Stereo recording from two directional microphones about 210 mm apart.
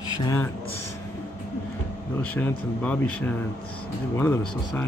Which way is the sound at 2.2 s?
5° left (ahead or behind).